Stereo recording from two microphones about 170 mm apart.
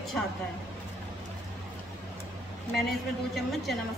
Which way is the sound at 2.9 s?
Centre (ahead or behind).